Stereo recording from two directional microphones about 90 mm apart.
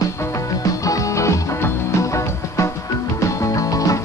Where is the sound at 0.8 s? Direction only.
40° left (ahead or behind).